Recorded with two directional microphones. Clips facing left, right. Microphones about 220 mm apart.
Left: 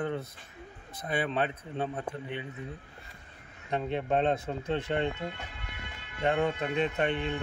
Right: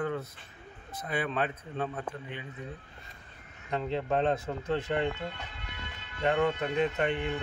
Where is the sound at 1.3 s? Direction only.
25° left (ahead or behind).